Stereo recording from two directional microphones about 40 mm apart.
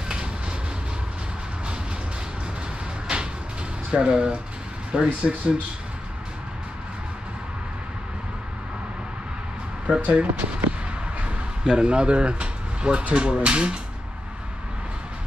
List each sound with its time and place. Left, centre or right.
0.1 s train: right
3.9 s speech: right
9.8 s speech: right
10.2 s speech: right
11.1 s speech: right